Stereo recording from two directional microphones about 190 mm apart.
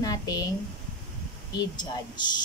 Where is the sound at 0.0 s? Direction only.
20° left (ahead or behind).